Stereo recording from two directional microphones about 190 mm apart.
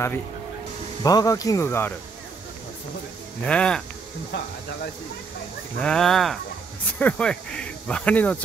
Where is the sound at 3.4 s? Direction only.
5° left (ahead or behind).